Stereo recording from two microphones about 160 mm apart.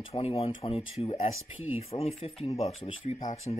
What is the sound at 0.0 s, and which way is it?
Speech, 40° left (ahead or behind).